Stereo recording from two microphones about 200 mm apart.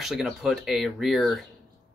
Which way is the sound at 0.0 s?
Centre (ahead or behind).